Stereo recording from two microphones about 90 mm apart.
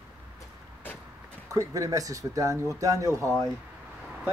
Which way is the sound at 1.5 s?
40° right (ahead or behind).